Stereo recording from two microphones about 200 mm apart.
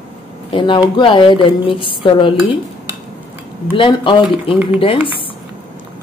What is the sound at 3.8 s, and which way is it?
Speech, 25° left (ahead or behind).